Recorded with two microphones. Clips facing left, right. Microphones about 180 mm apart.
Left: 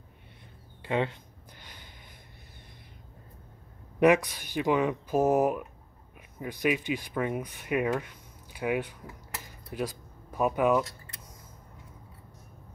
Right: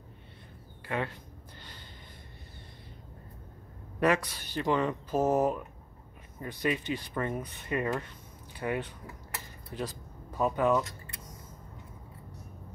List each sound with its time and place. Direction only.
0.8 s speech: 20° left (ahead or behind)
1.6 s snort: 15° left (ahead or behind)
4.0 s speech: 15° left (ahead or behind)